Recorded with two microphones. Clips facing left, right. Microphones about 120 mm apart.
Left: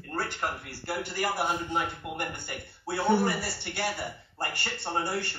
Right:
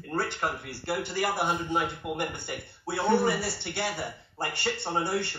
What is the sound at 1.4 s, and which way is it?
Speech, 20° right (ahead or behind).